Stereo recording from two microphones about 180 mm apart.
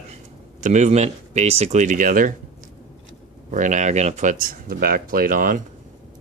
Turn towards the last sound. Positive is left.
turn(degrees=-50)  # may be behind; listen again after turning